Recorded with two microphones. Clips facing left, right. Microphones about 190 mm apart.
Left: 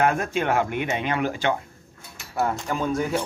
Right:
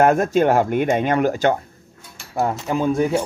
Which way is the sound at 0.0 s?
45° right (ahead or behind).